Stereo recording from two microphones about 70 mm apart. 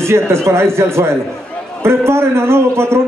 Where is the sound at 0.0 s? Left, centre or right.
Right.